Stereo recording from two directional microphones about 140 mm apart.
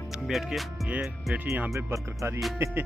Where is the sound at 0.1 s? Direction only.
Centre (ahead or behind).